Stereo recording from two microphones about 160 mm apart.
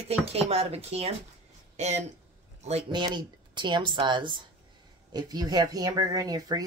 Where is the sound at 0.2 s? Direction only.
40° right (ahead or behind).